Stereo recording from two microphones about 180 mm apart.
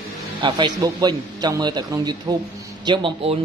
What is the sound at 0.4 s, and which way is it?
Speech, 25° right (ahead or behind).